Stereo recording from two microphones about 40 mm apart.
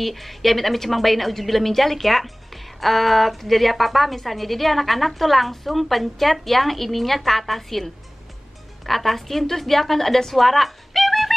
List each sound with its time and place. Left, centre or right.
0.0 s a woman's voice: centre